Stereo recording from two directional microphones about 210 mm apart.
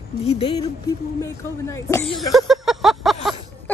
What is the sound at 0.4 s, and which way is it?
Speech, 25° left (ahead or behind).